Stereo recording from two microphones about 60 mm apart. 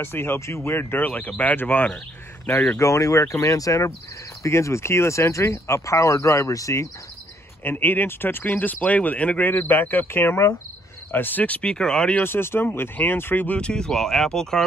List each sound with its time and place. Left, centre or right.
0.0 s speech: left
2.8 s speech: left
4.4 s speech: left
7.6 s speech: left; by 12.2 s centre
12.2 s speech: left
13.6 s speech: centre